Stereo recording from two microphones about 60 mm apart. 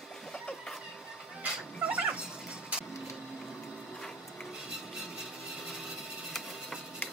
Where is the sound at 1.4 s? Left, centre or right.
Right.